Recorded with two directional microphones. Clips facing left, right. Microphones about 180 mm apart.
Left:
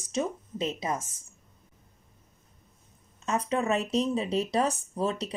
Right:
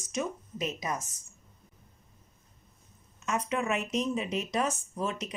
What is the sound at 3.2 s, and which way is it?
Speech, 35° left (ahead or behind).